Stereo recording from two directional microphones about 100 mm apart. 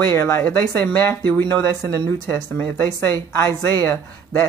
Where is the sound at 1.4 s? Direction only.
40° right (ahead or behind).